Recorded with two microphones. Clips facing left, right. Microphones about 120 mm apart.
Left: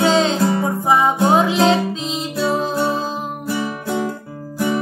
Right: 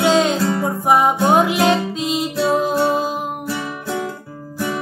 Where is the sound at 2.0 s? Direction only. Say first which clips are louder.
Right 3 dB; 10° right (ahead or behind).